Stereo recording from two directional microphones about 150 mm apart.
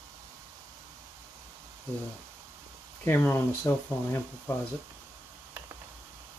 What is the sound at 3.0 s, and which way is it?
Speech, 15° left (ahead or behind).